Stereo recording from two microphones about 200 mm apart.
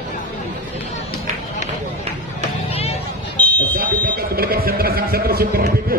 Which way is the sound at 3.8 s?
50° right (ahead or behind).